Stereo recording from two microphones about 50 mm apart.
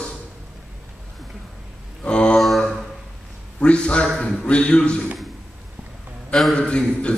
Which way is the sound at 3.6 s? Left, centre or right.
Left.